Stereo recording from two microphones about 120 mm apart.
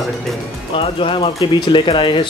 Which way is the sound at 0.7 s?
45° left (ahead or behind).